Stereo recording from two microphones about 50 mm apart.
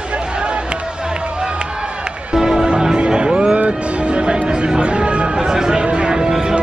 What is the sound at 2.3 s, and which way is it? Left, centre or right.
Music, centre.